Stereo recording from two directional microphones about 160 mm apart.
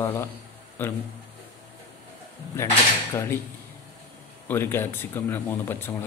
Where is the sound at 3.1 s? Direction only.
15° left (ahead or behind).